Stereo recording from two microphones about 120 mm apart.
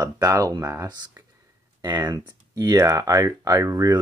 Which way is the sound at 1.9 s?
35° right (ahead or behind).